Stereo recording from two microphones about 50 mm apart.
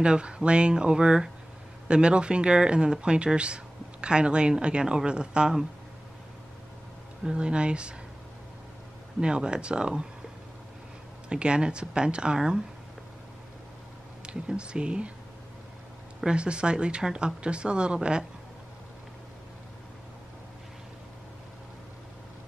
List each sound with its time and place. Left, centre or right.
0.0 s speech: centre
7.2 s speech: centre
9.2 s speech: centre
11.2 s speech: centre
14.2 s speech: centre
16.3 s speech: centre